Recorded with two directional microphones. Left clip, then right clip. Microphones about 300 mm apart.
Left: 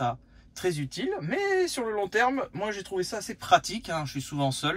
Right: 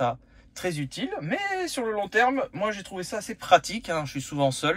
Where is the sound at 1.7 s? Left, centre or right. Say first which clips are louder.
Right 1 dB; centre.